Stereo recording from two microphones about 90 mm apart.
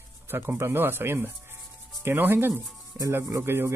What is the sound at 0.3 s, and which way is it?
Speech, 25° right (ahead or behind).